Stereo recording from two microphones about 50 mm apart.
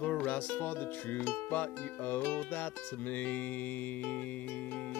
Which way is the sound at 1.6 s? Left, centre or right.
Left.